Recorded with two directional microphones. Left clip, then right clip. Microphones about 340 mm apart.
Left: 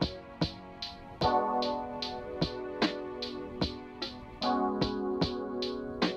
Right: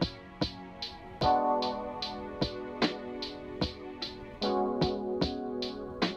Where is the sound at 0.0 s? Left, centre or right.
Centre.